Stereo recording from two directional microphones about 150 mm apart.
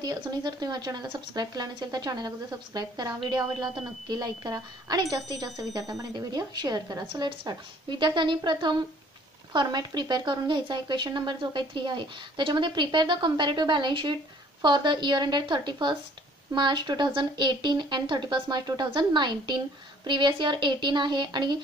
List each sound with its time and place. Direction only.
0.0 s speech: 25° right (ahead or behind)